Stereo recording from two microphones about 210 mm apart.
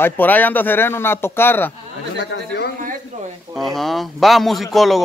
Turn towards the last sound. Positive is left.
turn(degrees=0)  # may be behind; listen again after turning